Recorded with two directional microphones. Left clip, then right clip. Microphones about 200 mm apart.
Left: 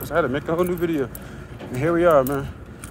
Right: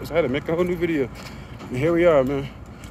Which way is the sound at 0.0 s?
15° right (ahead or behind).